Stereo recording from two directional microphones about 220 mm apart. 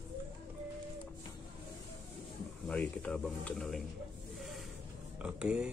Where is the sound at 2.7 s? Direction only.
5° left (ahead or behind).